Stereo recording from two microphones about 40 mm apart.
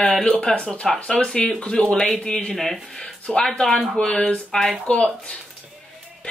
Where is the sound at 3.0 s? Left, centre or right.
Left.